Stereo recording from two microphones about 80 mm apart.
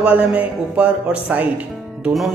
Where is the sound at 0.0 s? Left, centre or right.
Centre.